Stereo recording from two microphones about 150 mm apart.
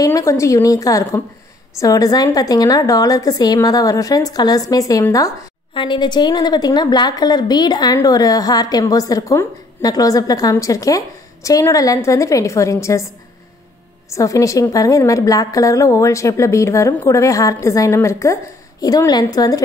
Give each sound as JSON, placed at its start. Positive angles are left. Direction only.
{"t": 0.0, "sound": "a woman's voice", "side_deg": 20}
{"t": 14.1, "sound": "a woman's voice", "side_deg": 20}